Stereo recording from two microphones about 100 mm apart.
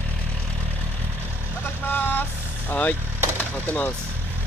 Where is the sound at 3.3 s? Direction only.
20° left (ahead or behind).